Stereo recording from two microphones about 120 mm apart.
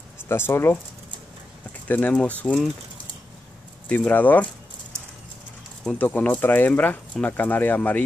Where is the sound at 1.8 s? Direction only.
15° left (ahead or behind).